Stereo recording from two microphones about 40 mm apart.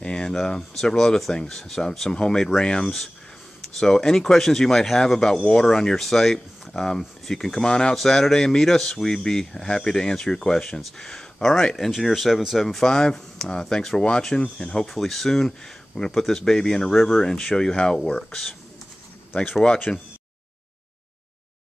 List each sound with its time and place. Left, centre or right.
0.0 s a sound: left
0.5 s speech: centre
2.0 s speech: centre
12.6 s speech: centre
14.9 s speech: centre
19.9 s speech: centre